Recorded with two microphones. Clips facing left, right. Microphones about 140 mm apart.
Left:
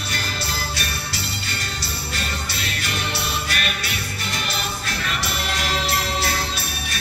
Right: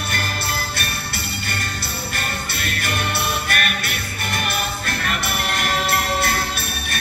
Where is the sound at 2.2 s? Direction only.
55° right (ahead or behind).